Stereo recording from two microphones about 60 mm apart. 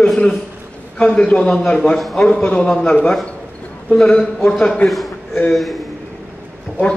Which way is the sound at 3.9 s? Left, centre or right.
Centre.